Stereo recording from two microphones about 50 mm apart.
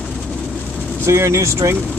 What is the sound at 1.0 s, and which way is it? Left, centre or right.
Speech, right.